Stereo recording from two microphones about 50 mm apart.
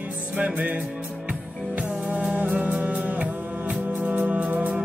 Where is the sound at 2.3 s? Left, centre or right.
Right.